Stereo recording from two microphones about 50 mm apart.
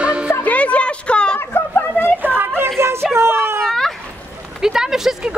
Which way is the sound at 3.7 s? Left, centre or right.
Centre.